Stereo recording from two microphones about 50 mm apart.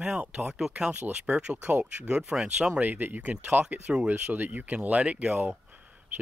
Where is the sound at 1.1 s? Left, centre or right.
Right.